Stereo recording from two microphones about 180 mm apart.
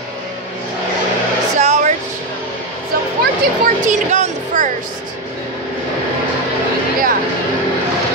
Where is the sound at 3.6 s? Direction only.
45° right (ahead or behind).